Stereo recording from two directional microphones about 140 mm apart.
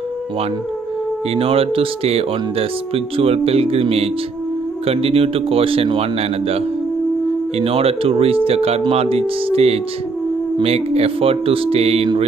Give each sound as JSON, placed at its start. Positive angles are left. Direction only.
{"t": 1.3, "sound": "mantra", "side_deg": -45}
{"t": 7.5, "sound": "mantra", "side_deg": -45}